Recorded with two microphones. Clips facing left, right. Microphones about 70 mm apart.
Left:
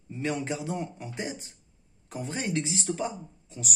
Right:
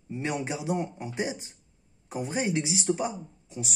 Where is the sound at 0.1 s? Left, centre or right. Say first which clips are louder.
Even; centre.